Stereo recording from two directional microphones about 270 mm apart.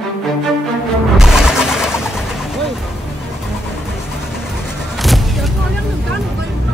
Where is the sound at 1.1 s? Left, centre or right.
Centre.